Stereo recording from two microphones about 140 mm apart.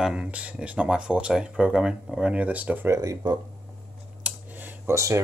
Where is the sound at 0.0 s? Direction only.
5° right (ahead or behind); by 3.3 s 25° right (ahead or behind).